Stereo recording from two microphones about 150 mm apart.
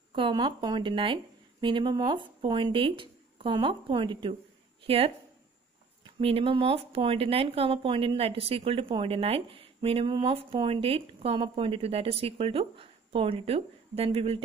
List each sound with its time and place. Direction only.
0.1 s a woman's voice: 30° right (ahead or behind)
6.1 s speech: 40° right (ahead or behind)